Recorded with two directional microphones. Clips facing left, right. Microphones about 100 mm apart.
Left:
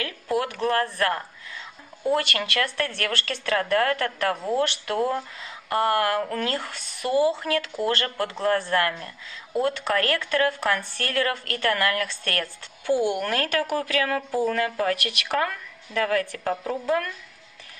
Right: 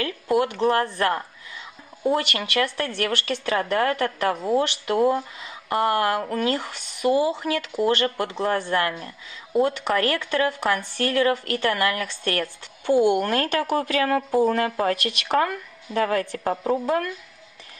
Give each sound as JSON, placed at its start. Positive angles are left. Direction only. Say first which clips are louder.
{"t": 0.0, "sound": "speech", "louder": "right 4 dB", "side_deg": -25}